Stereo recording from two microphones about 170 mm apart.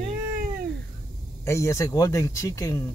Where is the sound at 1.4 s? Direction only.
15° left (ahead or behind).